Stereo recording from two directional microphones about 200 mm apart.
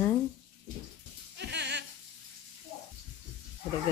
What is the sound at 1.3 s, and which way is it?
Goat, 60° right (ahead or behind).